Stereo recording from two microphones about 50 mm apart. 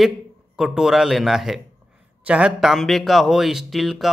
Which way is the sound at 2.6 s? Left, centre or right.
Centre.